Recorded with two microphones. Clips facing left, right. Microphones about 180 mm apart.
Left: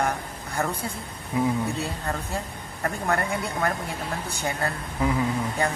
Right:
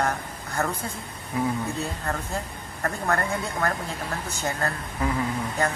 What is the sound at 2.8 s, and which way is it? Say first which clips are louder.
Speech: even; 15° left (ahead or behind).